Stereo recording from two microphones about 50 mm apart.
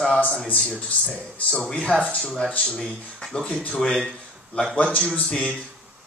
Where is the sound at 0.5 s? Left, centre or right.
Left.